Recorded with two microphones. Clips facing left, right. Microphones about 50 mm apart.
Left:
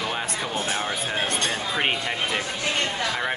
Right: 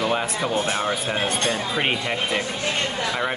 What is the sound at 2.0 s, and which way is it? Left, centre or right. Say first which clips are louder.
Speech: right 2 dB; centre.